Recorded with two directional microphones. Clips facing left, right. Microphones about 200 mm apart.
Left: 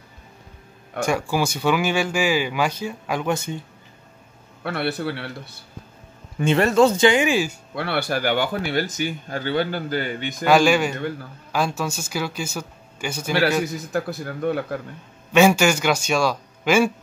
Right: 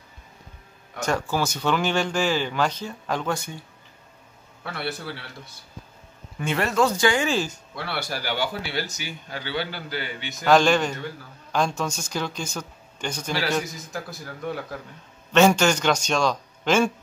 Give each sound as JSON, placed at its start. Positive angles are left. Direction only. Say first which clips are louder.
{"t": 1.0, "sound": "speech", "louder": "left 2 dB", "side_deg": 10}
{"t": 3.3, "sound": "speech", "louder": "left 6 dB", "side_deg": 20}
{"t": 4.6, "sound": "a man's voice", "louder": "left 7 dB", "side_deg": 65}
{"t": 6.7, "sound": "speech", "louder": "left 4 dB", "side_deg": 25}
{"t": 7.7, "sound": "speech", "louder": "left 8 dB", "side_deg": 60}
{"t": 10.4, "sound": "speech", "louder": "left 2 dB", "side_deg": 10}
{"t": 13.9, "sound": "a man's voice", "louder": "left 9 dB", "side_deg": 60}
{"t": 15.3, "sound": "speech", "louder": "left 2 dB", "side_deg": 10}